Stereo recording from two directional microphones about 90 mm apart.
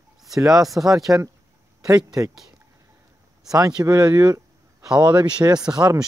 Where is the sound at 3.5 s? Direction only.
40° right (ahead or behind).